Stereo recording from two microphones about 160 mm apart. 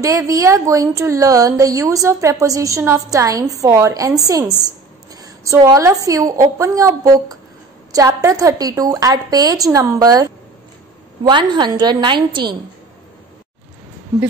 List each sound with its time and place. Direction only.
0.3 s a woman's voice: 20° right (ahead or behind)